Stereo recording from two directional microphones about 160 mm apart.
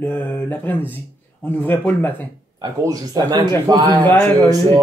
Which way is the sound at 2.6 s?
25° right (ahead or behind).